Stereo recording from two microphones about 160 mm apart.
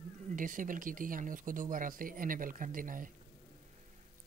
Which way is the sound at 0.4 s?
55° right (ahead or behind).